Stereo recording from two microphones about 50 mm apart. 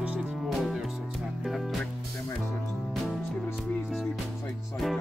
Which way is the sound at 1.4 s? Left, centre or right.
Centre.